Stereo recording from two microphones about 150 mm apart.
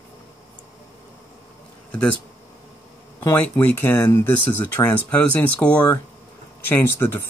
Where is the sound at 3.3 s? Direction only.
10° left (ahead or behind).